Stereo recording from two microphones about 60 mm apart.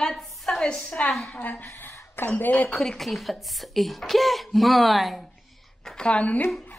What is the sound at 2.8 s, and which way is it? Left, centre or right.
A woman's voice, centre.